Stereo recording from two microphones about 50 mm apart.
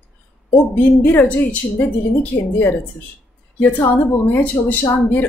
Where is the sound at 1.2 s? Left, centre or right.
Left.